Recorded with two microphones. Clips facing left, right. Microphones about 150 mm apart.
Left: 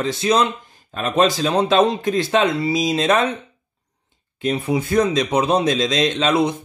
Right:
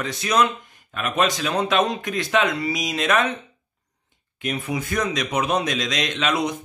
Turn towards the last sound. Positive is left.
turn(degrees=30)  # may be behind; listen again after turning